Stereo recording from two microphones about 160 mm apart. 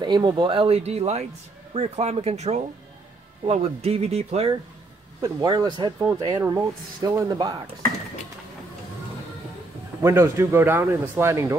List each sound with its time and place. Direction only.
0.0 s speech: 30° right (ahead or behind)
5.2 s speech: 25° right (ahead or behind)
10.0 s speech: 20° right (ahead or behind)